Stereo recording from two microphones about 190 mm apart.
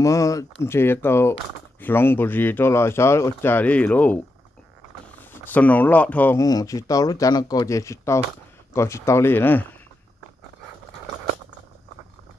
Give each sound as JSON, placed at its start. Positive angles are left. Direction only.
{"t": 0.0, "sound": "speech", "side_deg": 15}
{"t": 5.3, "sound": "speech", "side_deg": 10}